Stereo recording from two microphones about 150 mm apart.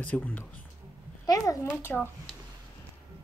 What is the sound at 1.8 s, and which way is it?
Speech, 15° left (ahead or behind).